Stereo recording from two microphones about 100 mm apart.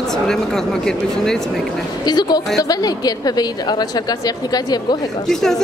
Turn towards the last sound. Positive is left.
turn(degrees=5)  # may be behind; listen again after turning